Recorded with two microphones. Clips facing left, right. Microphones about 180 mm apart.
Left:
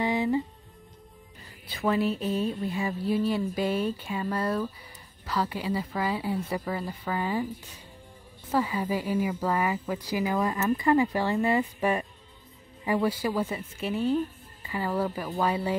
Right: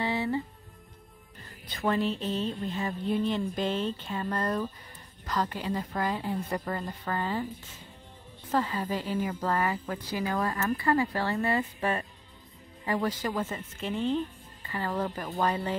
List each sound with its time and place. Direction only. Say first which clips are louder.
0.0 s music: left 4 dB; 15° left (ahead or behind)
1.7 s a woman's voice: left 2 dB; 5° left (ahead or behind)
8.5 s a woman's voice: left 2 dB; 10° left (ahead or behind)